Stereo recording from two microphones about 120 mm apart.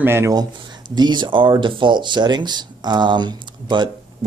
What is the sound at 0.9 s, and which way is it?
Speech, 35° right (ahead or behind).